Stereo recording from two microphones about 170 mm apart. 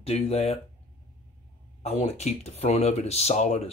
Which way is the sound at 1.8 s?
40° left (ahead or behind).